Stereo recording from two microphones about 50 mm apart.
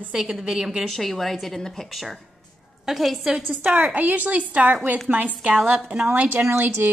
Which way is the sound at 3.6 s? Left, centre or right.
Right.